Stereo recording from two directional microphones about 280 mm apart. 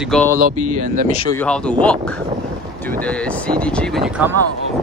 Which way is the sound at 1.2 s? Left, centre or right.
Centre.